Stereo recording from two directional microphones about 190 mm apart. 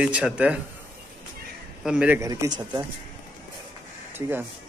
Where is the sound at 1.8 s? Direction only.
5° right (ahead or behind); by 2.9 s 20° right (ahead or behind).